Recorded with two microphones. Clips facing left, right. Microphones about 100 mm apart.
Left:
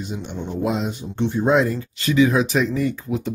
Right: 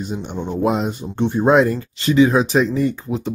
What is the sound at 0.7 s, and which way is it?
Speech, 50° right (ahead or behind).